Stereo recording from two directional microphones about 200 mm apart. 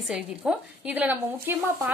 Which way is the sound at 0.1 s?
5° right (ahead or behind).